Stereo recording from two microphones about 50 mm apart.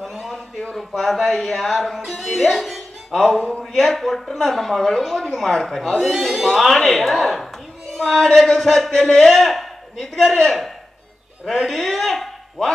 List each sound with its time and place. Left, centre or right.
0.0 s a sound: centre
0.7 s a woman's voice: centre
3.3 s speech: left
3.7 s a woman's voice: centre